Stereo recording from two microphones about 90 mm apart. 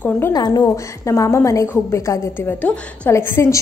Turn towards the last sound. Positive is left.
turn(degrees=30)  # may be behind; listen again after turning